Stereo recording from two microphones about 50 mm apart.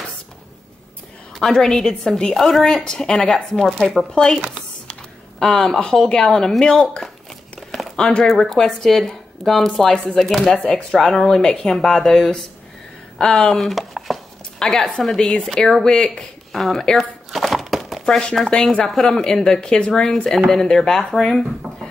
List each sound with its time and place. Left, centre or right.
1.4 s speech: centre
5.4 s speech: centre
8.2 s speech: centre
13.6 s chopping: centre
14.6 s speech: centre
16.5 s speech: centre
16.9 s a sound: centre
18.0 s speech: centre
19.0 s speech: centre